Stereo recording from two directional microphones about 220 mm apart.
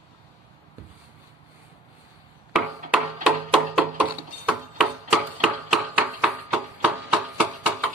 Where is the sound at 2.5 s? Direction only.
5° right (ahead or behind).